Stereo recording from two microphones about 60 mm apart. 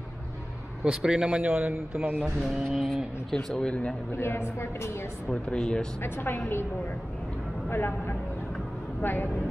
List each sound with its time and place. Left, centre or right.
0.8 s speech: centre
1.4 s a man's voice: right
2.4 s speech: centre
3.4 s speech: centre
4.1 s a woman's voice: left
5.3 s speech: centre
6.0 s a woman's voice: left
7.7 s a woman's voice: left